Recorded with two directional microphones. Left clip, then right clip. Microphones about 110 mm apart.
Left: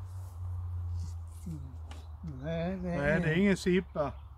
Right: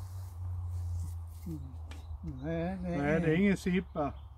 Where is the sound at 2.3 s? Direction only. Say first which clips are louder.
Even; 15° left (ahead or behind).